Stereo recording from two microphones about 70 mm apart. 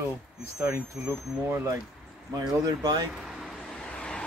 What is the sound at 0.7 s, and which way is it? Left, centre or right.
Speech, right.